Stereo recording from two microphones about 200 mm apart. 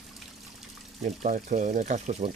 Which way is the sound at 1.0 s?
40° right (ahead or behind).